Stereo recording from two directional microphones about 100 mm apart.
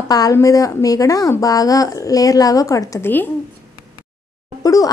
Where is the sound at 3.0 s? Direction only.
20° left (ahead or behind).